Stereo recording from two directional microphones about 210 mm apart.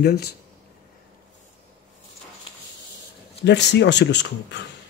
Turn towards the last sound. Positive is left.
turn(degrees=55)  # may be behind; listen again after turning